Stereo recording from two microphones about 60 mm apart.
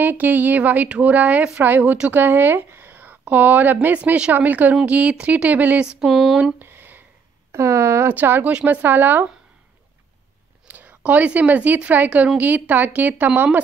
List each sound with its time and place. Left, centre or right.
0.0 s a woman's voice: right
5.9 s a sound: centre
6.6 s a sound: right
7.5 s speech: right
8.1 s speech: right
8.5 s a woman's voice: right
10.7 s a woman's voice: right